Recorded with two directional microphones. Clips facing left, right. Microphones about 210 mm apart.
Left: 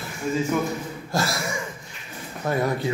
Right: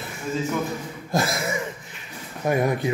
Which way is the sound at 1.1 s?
20° right (ahead or behind).